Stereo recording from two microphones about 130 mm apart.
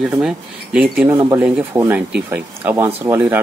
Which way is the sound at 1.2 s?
20° right (ahead or behind).